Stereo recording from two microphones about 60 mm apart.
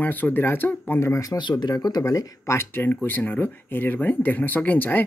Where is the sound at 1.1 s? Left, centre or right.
Left.